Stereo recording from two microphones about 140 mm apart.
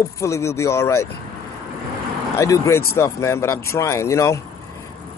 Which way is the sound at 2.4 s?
20° left (ahead or behind).